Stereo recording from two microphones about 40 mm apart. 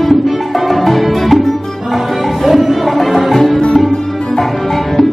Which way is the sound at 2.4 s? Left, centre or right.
Centre.